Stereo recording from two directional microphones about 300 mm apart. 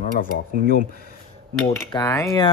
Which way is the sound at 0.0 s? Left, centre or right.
Left.